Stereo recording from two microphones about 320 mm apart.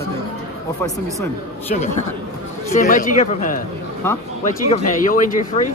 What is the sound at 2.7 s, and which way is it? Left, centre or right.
Speech, left.